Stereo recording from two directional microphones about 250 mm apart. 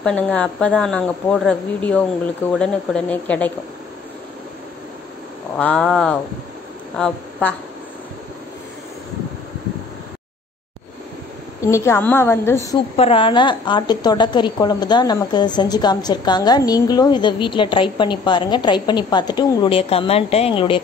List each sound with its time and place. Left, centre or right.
0.0 s a woman's voice: centre
5.6 s a woman's voice: centre
11.6 s a woman's voice: centre
12.5 s a woman's voice: left